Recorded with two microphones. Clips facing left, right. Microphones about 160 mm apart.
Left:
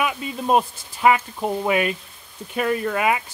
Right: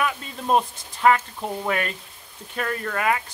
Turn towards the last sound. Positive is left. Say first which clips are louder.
# left 3 dB
turn(degrees=15)  # may be behind; listen again after turning